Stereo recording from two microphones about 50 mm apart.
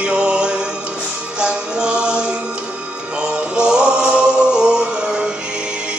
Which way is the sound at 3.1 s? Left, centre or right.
Centre.